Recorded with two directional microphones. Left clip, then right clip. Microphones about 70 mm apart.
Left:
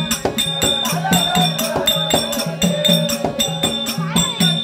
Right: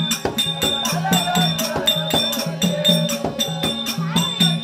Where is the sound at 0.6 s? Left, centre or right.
Left.